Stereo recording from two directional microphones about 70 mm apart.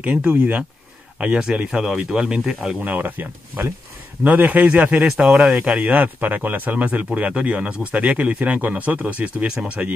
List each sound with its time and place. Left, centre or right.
0.0 s speech: right
2.8 s speech: right
5.1 s speech: centre
5.6 s speech: right